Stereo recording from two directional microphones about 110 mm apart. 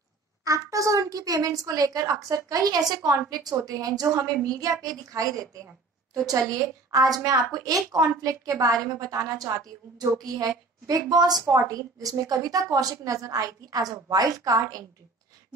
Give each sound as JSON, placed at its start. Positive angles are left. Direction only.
{"t": 0.5, "sound": "a child's voice", "side_deg": -30}
{"t": 6.1, "sound": "a woman's voice", "side_deg": -30}